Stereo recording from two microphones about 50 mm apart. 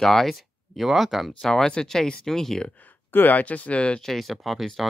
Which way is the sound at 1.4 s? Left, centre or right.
Centre.